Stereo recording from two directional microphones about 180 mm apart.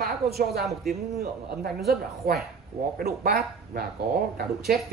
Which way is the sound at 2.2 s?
55° right (ahead or behind).